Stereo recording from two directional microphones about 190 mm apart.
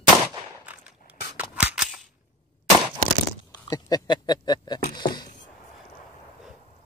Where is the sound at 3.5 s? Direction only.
20° left (ahead or behind).